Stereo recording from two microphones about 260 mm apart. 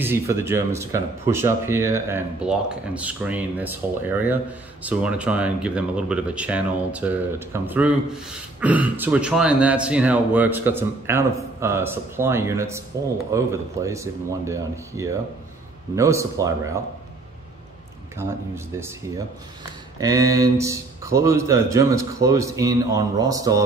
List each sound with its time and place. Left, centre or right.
0.0 s speech: centre
18.1 s speech: centre
20.0 s speech: centre